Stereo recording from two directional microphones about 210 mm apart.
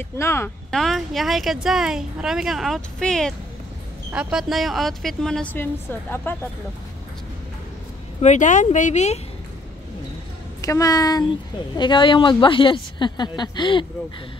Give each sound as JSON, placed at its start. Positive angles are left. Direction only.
{"t": 0.2, "sound": "speech", "side_deg": 10}
{"t": 0.7, "sound": "speech", "side_deg": 0}
{"t": 8.2, "sound": "speech", "side_deg": 35}
{"t": 10.6, "sound": "a woman's voice", "side_deg": 15}